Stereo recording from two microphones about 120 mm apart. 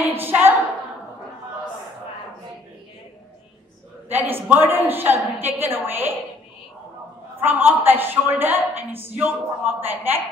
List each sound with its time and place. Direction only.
0.0 s a sound: 15° right (ahead or behind)
4.1 s a woman's voice: 15° right (ahead or behind)
7.3 s a woman's voice: 15° right (ahead or behind)